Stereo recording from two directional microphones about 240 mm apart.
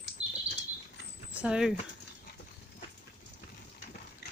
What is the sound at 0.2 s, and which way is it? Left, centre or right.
Chirp, right.